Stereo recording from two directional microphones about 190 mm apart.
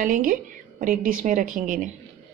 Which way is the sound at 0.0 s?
45° right (ahead or behind).